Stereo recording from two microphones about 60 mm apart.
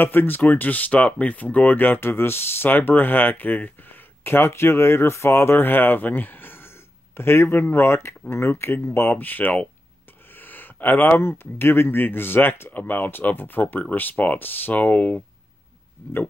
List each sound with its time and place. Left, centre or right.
0.0 s speech: left